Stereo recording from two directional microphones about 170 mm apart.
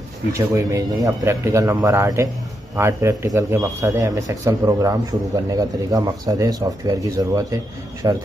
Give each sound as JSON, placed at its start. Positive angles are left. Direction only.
{"t": 0.3, "sound": "a man's voice", "side_deg": -15}